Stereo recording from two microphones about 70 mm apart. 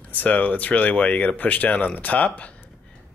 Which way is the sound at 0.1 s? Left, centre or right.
Left.